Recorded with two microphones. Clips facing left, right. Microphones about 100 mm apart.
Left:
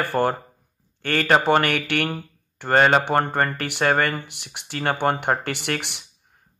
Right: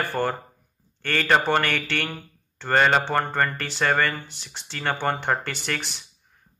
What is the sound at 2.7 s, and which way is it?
Speech, 20° left (ahead or behind).